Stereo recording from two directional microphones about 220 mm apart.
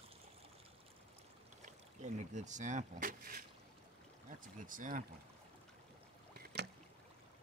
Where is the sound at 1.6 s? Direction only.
30° right (ahead or behind).